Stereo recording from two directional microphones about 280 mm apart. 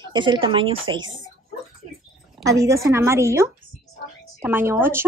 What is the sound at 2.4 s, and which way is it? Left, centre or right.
Speech, centre.